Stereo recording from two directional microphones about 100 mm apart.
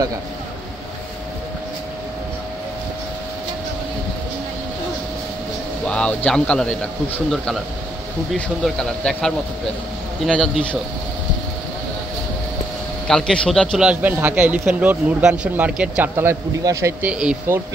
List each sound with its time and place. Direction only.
5.9 s speech: 10° left (ahead or behind)
7.2 s speech: centre (ahead or behind)
8.6 s a man's voice: 5° left (ahead or behind)
13.1 s a man's voice: 5° left (ahead or behind)
13.7 s speech: 10° right (ahead or behind)
17.0 s speech: 10° right (ahead or behind)